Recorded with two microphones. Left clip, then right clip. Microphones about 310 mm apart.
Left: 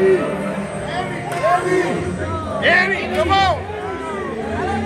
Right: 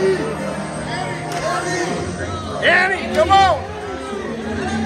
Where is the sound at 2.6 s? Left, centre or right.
Right.